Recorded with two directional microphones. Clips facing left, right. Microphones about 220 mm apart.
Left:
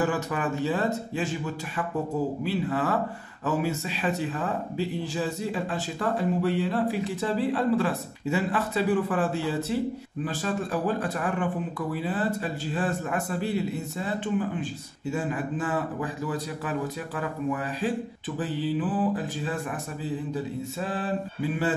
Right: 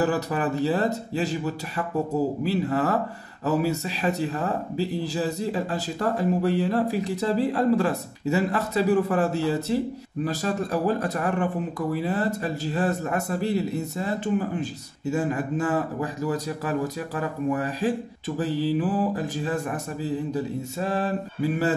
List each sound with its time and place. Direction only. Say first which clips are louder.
0.0 s speech: right 3 dB; 35° right (ahead or behind)